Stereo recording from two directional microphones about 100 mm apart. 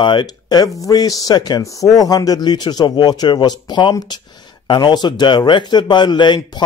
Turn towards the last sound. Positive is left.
turn(degrees=50)  # may be behind; listen again after turning